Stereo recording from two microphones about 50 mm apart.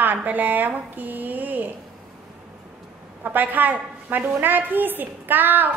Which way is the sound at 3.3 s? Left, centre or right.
Right.